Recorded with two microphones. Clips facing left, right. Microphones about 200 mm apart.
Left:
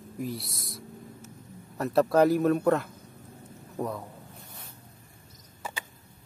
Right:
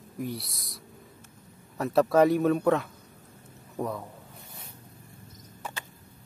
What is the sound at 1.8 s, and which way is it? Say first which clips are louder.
Speech: right 1 dB; centre (ahead or behind).